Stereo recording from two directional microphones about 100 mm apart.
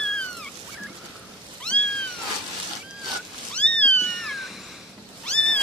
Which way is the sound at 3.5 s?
10° left (ahead or behind).